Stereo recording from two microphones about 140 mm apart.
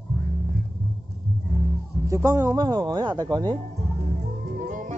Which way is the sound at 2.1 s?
20° right (ahead or behind).